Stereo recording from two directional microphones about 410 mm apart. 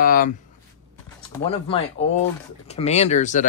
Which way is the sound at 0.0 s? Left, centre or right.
Left.